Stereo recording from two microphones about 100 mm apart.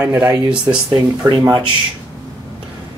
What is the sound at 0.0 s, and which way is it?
Speech, 15° right (ahead or behind).